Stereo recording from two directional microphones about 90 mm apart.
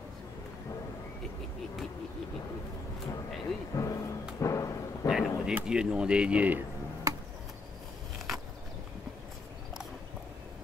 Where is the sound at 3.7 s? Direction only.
35° left (ahead or behind).